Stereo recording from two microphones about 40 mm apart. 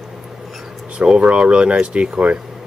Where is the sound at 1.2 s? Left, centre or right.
Right.